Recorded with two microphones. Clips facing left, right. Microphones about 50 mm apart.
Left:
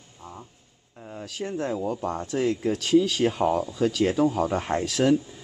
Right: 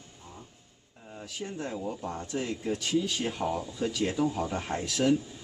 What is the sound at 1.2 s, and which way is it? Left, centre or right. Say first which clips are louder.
Speech: left 7 dB; left.